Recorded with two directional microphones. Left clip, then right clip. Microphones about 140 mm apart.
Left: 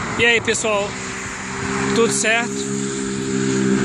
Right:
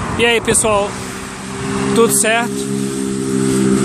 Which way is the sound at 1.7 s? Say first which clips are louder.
Right 3 dB; 45° right (ahead or behind).